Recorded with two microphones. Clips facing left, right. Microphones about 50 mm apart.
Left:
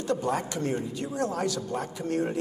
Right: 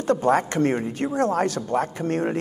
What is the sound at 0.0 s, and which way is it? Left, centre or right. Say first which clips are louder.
A man's voice: right 8 dB; right.